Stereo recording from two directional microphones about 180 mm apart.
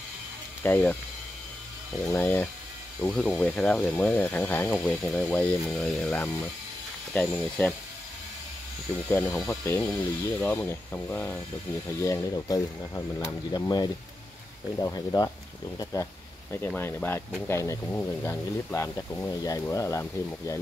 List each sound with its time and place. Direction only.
0.7 s speech: 10° left (ahead or behind)
2.0 s speech: 10° left (ahead or behind)
9.1 s speech: 10° left (ahead or behind)